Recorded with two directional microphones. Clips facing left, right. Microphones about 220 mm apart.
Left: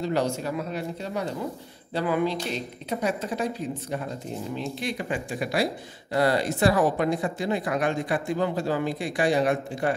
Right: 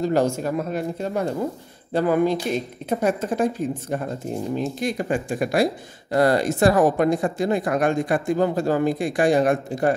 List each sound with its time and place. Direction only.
0.0 s speech: 45° right (ahead or behind)